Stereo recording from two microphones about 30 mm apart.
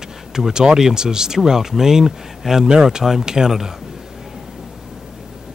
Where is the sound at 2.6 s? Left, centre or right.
Right.